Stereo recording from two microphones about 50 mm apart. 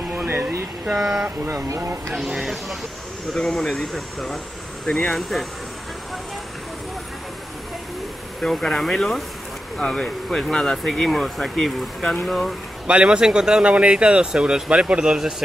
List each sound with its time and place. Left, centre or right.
0.1 s a sound: right
0.9 s speech: centre
1.8 s speech: right
2.1 s speech: centre
3.3 s speech: centre
8.4 s speech: centre
11.1 s speech: centre
12.8 s speech: right